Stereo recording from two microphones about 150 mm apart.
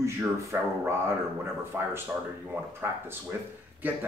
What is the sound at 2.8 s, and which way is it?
Speech, 15° right (ahead or behind).